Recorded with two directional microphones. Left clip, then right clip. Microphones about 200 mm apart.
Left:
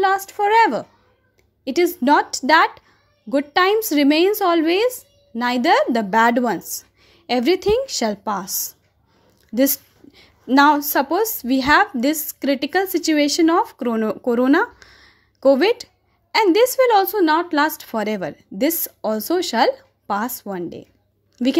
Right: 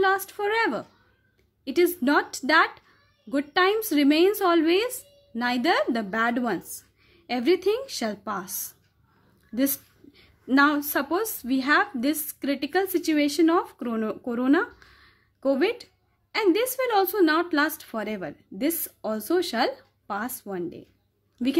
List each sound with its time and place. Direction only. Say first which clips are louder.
0.0 s a woman's voice: left 6 dB; 20° left (ahead or behind)